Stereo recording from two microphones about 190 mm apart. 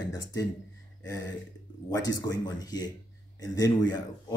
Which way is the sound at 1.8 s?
20° left (ahead or behind).